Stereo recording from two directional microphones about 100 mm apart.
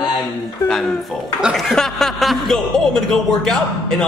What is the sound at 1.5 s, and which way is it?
A man's voice, 5° left (ahead or behind).